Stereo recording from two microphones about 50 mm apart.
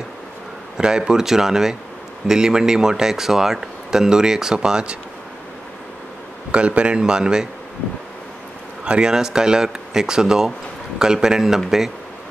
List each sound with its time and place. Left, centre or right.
0.7 s speech: centre
6.5 s speech: right
8.8 s speech: centre